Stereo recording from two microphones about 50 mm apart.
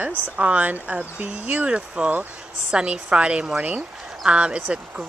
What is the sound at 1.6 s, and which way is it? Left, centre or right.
Speech, right.